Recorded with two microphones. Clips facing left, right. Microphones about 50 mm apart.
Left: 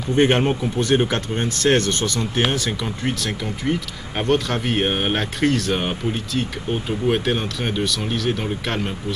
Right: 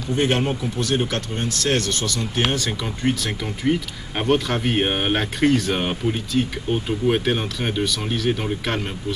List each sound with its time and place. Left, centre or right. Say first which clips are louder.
0.1 s speech: left 4 dB; left
2.4 s speech: right 1 dB; centre